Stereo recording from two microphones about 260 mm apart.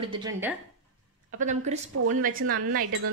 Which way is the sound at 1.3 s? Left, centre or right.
Right.